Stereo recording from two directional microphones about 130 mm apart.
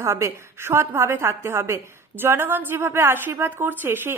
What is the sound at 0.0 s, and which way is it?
A woman's voice, 25° right (ahead or behind).